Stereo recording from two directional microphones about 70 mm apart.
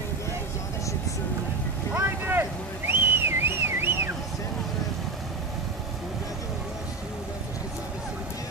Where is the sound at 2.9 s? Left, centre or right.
Right.